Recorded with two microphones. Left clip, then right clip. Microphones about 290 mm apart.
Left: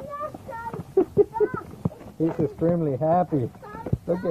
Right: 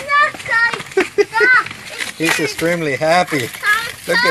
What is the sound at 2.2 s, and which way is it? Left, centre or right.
A child's voice, right.